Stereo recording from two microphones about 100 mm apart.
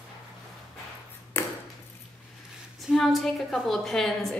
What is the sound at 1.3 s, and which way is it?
Ping, 25° left (ahead or behind).